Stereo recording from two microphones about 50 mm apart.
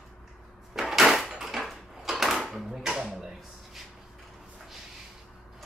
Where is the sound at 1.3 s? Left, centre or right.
Centre.